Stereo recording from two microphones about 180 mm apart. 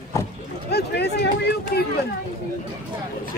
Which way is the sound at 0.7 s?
65° left (ahead or behind).